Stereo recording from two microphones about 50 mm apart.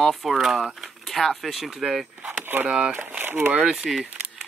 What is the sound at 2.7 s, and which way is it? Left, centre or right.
Speech, centre.